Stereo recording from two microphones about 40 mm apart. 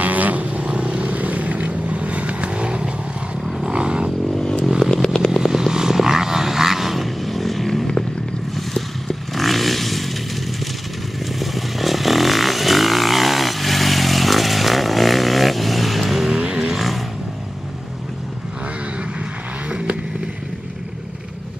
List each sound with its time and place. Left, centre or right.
0.0 s vehicle: right
1.1 s vehicle: right
4.6 s chainsaw: centre
4.9 s motorcycle: centre
5.4 s vehicle: centre
11.3 s vehicle: centre
16.3 s a sound: centre
16.7 s vehicle: centre